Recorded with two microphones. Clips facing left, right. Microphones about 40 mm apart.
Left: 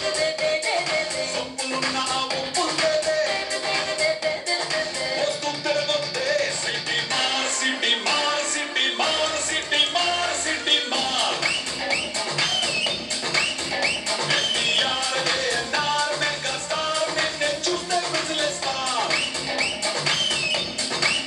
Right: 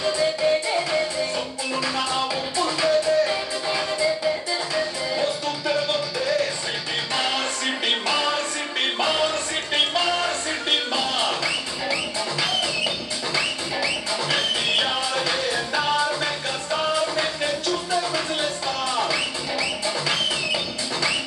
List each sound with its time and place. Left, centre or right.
0.0 s music: centre